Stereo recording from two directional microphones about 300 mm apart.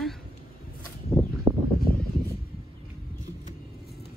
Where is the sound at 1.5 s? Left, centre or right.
Centre.